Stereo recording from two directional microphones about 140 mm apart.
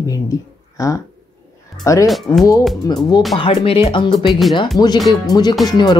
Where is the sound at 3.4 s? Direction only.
40° left (ahead or behind).